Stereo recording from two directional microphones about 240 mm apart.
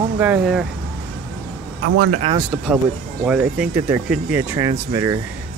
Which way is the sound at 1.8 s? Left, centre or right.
Right.